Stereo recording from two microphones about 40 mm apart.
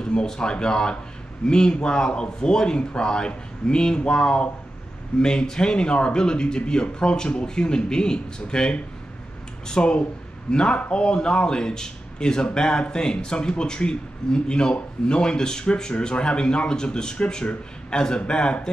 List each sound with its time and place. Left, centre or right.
0.0 s speech: centre